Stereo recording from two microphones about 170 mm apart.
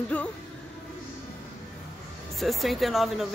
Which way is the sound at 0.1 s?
5° left (ahead or behind).